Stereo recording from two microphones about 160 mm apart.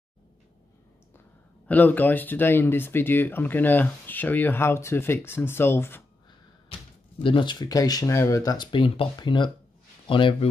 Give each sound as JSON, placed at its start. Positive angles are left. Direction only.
{"t": 1.7, "sound": "speech", "side_deg": 10}
{"t": 7.2, "sound": "speech", "side_deg": 30}